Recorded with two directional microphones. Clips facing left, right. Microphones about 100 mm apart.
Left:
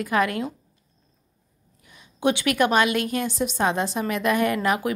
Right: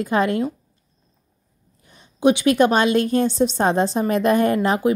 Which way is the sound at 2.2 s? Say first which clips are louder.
Right 6 dB; 20° right (ahead or behind).